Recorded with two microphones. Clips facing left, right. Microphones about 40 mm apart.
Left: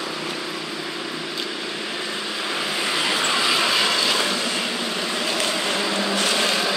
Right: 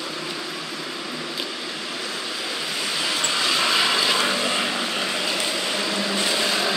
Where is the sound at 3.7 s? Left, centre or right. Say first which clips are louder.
Even; centre.